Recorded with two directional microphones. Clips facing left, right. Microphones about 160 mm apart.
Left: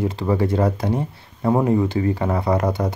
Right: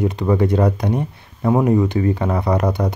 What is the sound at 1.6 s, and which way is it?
Speech, 25° left (ahead or behind).